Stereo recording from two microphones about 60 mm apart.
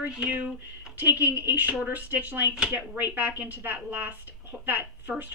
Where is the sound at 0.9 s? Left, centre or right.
Right.